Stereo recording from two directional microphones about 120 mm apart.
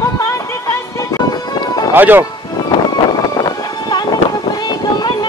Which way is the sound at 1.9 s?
15° right (ahead or behind).